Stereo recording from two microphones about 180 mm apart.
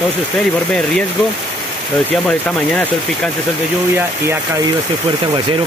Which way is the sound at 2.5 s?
5° left (ahead or behind).